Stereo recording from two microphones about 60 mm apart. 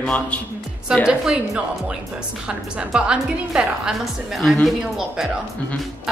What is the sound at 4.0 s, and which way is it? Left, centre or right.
Speech, centre.